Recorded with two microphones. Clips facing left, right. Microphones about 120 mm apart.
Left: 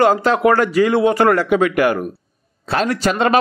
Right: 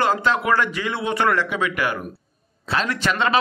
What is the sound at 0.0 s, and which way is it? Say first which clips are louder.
A man's voice: left 7 dB; 45° left (ahead or behind).